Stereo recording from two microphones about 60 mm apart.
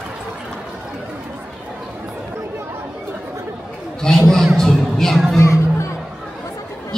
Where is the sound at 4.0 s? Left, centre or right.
Centre.